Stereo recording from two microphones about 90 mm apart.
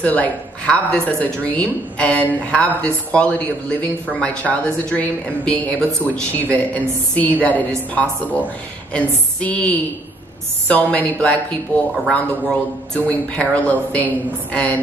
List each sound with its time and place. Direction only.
0.0 s a man's voice: 15° left (ahead or behind)